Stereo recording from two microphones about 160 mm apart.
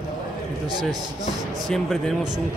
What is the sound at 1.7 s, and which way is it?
Speech, centre (ahead or behind).